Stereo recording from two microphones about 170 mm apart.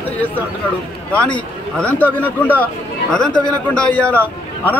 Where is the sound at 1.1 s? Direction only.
5° left (ahead or behind).